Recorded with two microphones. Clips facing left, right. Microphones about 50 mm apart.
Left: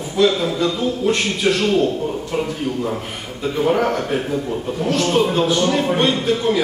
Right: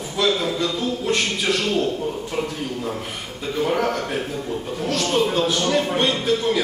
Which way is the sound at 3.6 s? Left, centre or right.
Centre.